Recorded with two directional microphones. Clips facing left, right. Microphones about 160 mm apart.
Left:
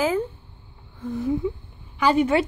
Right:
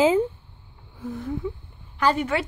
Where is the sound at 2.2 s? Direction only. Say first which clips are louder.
Left 6 dB; 20° left (ahead or behind).